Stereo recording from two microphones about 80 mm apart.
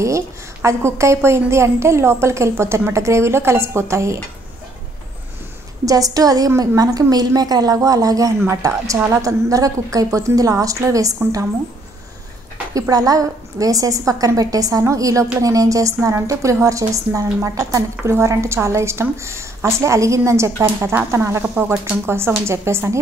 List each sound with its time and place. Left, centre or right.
0.0 s a woman's voice: right
5.9 s a woman's voice: right
12.7 s a woman's voice: right